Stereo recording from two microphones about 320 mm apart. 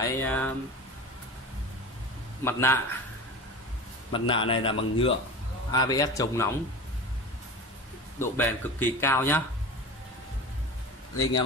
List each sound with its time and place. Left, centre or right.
0.0 s speech: centre
2.4 s a man's voice: centre
4.1 s a man's voice: centre
8.2 s a man's voice: centre